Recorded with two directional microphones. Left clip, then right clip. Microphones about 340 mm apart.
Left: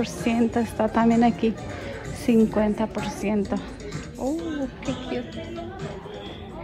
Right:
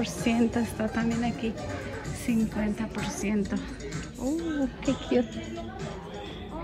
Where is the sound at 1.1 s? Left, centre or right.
Left.